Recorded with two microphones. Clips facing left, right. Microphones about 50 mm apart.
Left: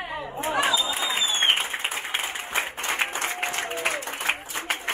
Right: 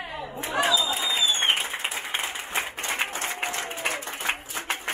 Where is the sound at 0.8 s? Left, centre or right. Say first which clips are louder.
Right 1 dB; left.